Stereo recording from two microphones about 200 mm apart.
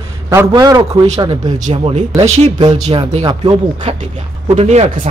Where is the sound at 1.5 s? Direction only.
35° right (ahead or behind).